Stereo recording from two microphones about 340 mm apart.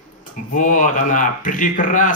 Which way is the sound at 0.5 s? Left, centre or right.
Left.